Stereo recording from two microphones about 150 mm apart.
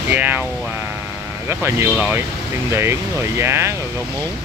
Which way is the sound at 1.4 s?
15° right (ahead or behind).